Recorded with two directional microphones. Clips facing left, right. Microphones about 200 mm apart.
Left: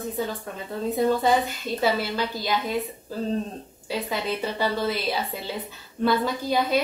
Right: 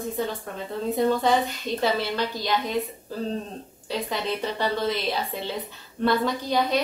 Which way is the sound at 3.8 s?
5° left (ahead or behind).